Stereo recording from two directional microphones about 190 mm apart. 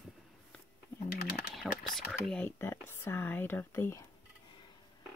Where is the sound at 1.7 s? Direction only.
Centre (ahead or behind).